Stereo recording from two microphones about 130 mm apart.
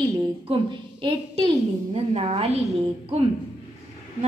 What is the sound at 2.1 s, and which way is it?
Speech, 50° right (ahead or behind).